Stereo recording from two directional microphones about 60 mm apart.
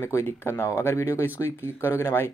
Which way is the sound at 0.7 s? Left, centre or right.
Left.